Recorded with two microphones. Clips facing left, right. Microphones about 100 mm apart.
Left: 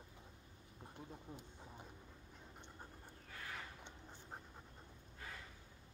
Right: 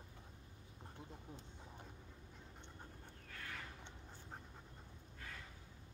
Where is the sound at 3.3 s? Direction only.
10° left (ahead or behind).